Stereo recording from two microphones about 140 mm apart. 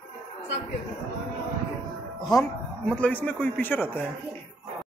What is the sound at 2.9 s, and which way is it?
A man's voice, 10° left (ahead or behind).